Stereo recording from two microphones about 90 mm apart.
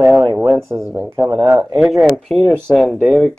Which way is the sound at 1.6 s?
5° right (ahead or behind).